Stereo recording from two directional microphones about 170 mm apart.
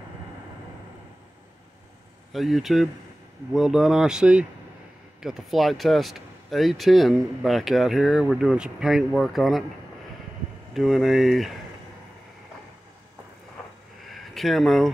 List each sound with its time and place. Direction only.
2.3 s speech: centre (ahead or behind)
10.7 s speech: centre (ahead or behind)
14.0 s a sound: centre (ahead or behind)